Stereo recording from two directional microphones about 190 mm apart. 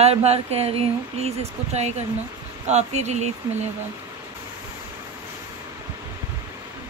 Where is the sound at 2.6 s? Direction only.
35° right (ahead or behind).